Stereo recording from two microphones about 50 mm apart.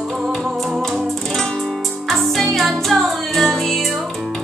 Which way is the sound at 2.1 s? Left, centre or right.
Centre.